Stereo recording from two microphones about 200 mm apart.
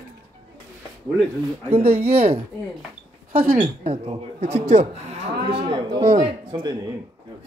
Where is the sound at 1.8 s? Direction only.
50° right (ahead or behind).